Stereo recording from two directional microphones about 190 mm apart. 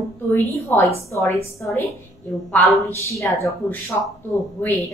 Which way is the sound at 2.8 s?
15° left (ahead or behind).